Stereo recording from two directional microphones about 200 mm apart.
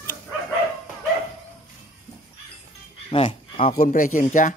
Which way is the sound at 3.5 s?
30° left (ahead or behind).